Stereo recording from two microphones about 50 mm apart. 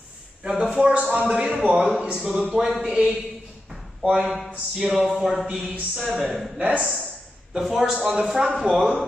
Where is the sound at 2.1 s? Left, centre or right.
Centre.